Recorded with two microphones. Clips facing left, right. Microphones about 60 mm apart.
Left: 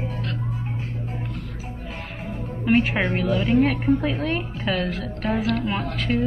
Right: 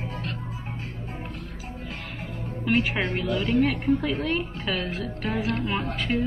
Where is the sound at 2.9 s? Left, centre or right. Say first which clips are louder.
Left 4 dB; centre.